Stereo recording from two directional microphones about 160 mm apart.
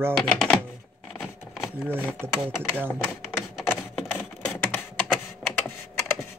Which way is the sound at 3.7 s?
5° left (ahead or behind).